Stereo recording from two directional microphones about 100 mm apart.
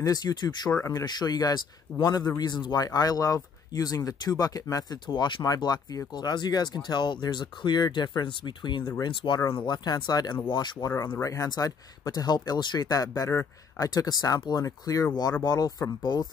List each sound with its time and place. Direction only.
0.0 s speech: 40° left (ahead or behind)
5.0 s speech: 50° left (ahead or behind)
11.1 s speech: 35° left (ahead or behind)